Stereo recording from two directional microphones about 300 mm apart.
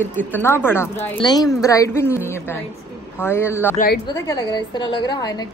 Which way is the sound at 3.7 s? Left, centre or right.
Left.